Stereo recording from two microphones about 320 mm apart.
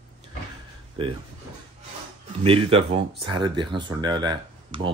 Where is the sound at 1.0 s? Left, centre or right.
Centre.